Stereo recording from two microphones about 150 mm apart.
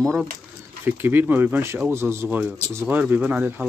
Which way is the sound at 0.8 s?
15° right (ahead or behind).